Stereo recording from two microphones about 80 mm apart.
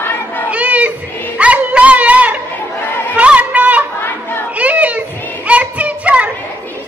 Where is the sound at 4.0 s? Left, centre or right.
Left.